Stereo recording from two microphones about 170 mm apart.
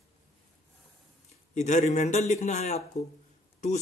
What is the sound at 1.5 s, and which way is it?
Speech, 45° left (ahead or behind).